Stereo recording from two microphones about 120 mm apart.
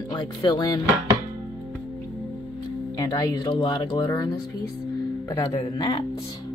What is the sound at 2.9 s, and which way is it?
Speech, 35° left (ahead or behind).